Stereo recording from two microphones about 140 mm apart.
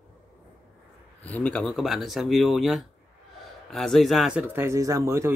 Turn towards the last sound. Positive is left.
turn(degrees=-20)  # may be behind; listen again after turning